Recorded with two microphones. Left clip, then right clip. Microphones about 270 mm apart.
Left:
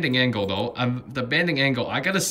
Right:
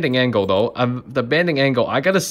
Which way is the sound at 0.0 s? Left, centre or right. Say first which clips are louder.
Right 5 dB; centre.